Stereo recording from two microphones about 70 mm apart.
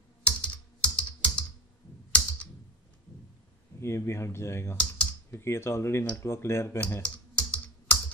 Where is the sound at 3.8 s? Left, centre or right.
Left.